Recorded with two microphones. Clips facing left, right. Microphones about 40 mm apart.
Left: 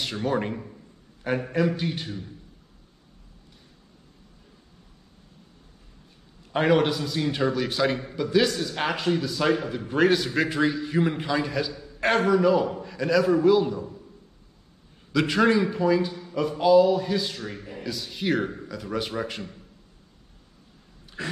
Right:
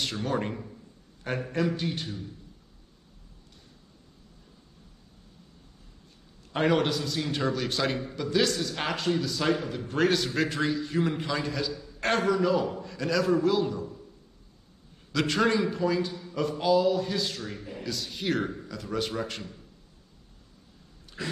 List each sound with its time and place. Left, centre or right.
0.0 s a man's voice: centre
6.5 s a man's voice: centre
15.1 s a man's voice: centre
17.4 s a man's voice: left
17.6 s a man's voice: centre